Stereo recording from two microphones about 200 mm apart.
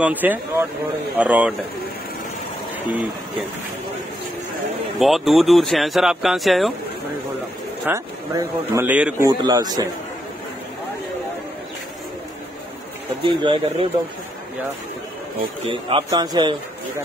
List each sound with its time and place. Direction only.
0.0 s speech: 10° right (ahead or behind)
4.9 s speech: centre (ahead or behind)
7.8 s speech: 15° right (ahead or behind)
9.3 s speech: 20° right (ahead or behind)
13.2 s speech: 25° right (ahead or behind)
15.6 s speech: 25° right (ahead or behind)